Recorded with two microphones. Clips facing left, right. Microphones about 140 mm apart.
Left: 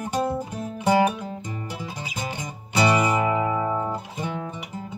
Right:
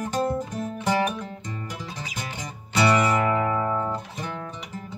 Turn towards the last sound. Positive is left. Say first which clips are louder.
# left 2 dB
turn(degrees=25)  # may be behind; listen again after turning